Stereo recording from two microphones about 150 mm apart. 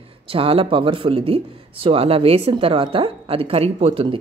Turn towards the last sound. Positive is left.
turn(degrees=-35)  # may be behind; listen again after turning